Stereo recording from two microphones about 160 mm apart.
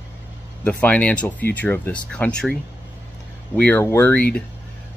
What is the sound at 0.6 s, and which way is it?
Speech, 10° left (ahead or behind).